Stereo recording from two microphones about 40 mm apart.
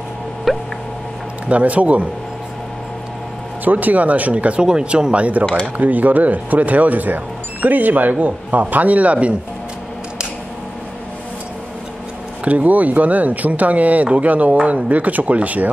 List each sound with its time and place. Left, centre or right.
0.5 s a sound: centre
1.5 s speech: right
3.6 s speech: right
5.4 s speech: centre
5.8 s speech: right
12.4 s speech: right